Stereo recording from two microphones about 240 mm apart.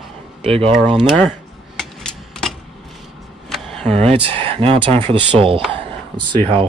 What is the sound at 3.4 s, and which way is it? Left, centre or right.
Vehicle, centre.